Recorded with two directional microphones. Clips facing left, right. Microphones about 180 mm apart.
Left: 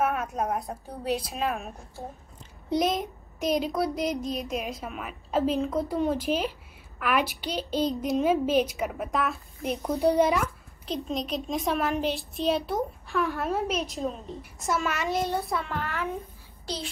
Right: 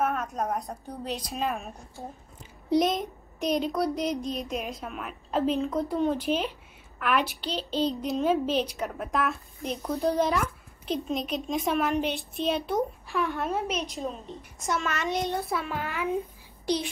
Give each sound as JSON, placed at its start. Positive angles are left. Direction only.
{"t": 0.2, "sound": "a child's voice", "side_deg": 0}
{"t": 7.7, "sound": "speech", "side_deg": 45}
{"t": 8.1, "sound": "a woman's voice", "side_deg": 10}
{"t": 10.2, "sound": "a child's voice", "side_deg": 0}
{"t": 15.8, "sound": "a child's voice", "side_deg": -15}